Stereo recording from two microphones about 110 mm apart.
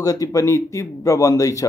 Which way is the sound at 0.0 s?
35° left (ahead or behind).